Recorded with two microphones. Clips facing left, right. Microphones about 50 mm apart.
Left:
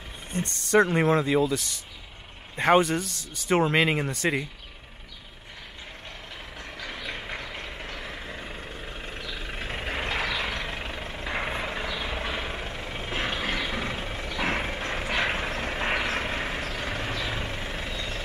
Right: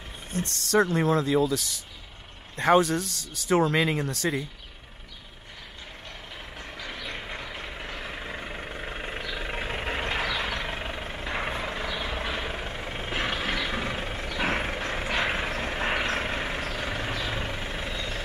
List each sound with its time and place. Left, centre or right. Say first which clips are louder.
0.3 s speech: even; centre
0.7 s speech: left 2 dB; left
1.1 s speech: even; centre
6.6 s vehicle: left 1 dB; centre
14.3 s mechanisms: even; centre
15.3 s vehicle: even; centre